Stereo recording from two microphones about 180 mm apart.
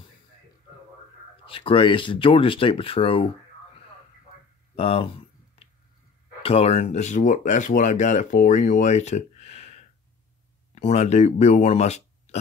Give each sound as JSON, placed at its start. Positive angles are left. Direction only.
{"t": 1.4, "sound": "speech", "side_deg": 30}
{"t": 4.7, "sound": "speech", "side_deg": 30}
{"t": 6.4, "sound": "speech", "side_deg": 35}